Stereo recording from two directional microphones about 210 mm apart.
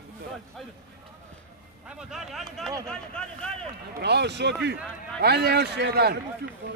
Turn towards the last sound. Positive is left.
turn(degrees=-50)  # may be behind; listen again after turning